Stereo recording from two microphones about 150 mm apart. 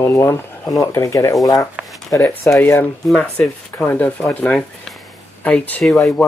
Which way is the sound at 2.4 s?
20° left (ahead or behind).